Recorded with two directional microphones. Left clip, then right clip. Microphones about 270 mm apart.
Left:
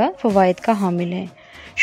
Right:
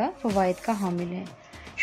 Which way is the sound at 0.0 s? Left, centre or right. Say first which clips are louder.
Left 9 dB; left.